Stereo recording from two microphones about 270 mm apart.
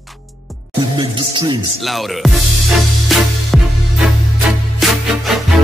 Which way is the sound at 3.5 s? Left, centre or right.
Centre.